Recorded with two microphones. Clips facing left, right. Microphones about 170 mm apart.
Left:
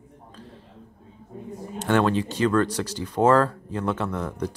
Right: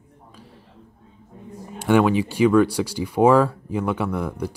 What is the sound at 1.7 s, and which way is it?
A man's voice, 10° right (ahead or behind).